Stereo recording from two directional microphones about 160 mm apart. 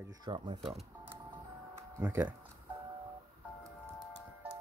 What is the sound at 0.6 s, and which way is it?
Speech, centre (ahead or behind).